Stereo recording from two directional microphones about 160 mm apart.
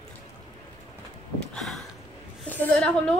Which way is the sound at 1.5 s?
Centre (ahead or behind).